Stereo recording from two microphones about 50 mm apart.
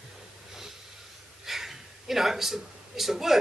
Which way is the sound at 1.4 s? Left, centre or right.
Centre.